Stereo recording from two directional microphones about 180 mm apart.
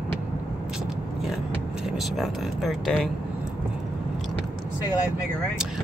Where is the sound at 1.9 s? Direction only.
Centre (ahead or behind).